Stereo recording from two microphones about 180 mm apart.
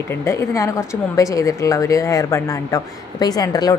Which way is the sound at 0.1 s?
15° left (ahead or behind).